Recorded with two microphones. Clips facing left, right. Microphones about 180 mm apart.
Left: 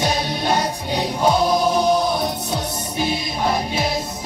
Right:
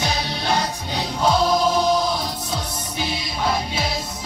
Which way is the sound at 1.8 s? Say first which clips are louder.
Left 2 dB; 55° left (ahead or behind).